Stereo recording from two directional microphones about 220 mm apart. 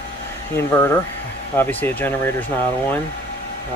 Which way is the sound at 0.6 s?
10° left (ahead or behind).